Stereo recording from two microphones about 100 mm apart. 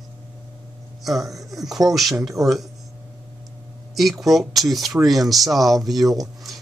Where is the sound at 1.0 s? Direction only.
Centre (ahead or behind).